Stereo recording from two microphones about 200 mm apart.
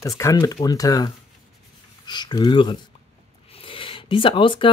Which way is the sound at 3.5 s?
25° left (ahead or behind).